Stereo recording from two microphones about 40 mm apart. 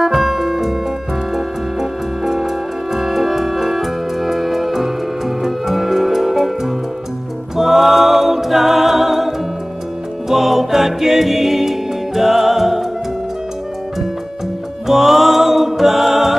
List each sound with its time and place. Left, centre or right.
0.0 s piano: centre
1.3 s music: centre
7.5 s a capella: centre
10.3 s music: centre
14.9 s music: centre